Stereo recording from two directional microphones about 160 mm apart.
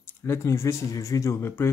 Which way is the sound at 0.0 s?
15° left (ahead or behind).